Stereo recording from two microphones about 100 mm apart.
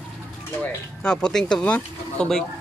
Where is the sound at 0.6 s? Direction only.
10° left (ahead or behind).